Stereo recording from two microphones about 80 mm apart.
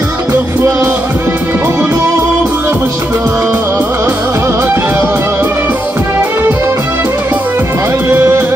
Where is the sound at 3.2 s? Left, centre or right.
Right.